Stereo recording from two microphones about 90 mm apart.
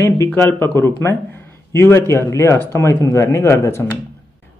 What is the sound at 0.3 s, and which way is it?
A man's voice, 25° left (ahead or behind).